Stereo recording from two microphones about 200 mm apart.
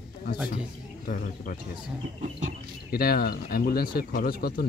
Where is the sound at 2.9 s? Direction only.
50° left (ahead or behind).